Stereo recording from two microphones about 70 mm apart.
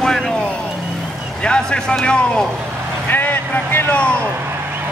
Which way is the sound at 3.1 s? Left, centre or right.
Left.